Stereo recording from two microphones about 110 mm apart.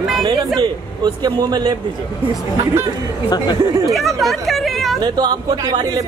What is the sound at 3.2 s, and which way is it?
Speech, 40° left (ahead or behind).